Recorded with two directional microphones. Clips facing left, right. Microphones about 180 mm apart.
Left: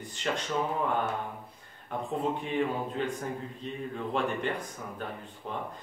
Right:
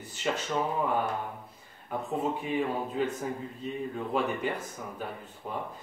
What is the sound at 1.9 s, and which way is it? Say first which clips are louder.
Speech: even; 5° right (ahead or behind).